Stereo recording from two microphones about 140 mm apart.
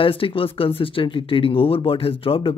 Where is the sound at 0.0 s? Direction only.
40° left (ahead or behind).